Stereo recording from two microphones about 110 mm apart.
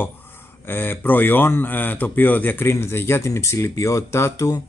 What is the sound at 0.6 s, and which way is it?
Speech, 20° left (ahead or behind).